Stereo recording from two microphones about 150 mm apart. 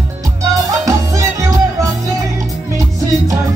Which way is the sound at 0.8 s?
20° right (ahead or behind).